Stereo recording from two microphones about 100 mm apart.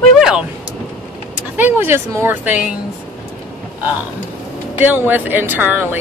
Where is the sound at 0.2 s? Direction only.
5° right (ahead or behind).